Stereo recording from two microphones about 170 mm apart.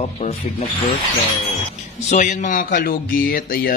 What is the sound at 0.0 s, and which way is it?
Speech, 35° left (ahead or behind).